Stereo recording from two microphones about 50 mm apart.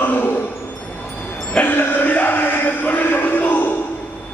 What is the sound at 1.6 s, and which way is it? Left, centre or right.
Music, left.